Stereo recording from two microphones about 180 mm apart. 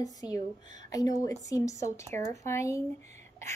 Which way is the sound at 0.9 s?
20° left (ahead or behind).